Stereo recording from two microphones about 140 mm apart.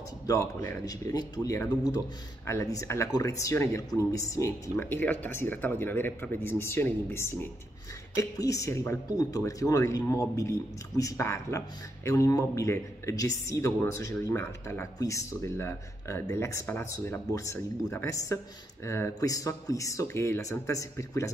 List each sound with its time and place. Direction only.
0.3 s speech: 25° left (ahead or behind)